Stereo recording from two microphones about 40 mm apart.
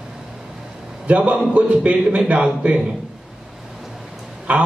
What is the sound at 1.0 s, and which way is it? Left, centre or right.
A man's voice, right.